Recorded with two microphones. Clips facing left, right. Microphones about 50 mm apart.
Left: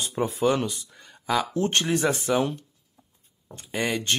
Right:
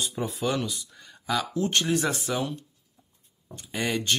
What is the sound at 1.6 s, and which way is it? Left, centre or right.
Speech, left.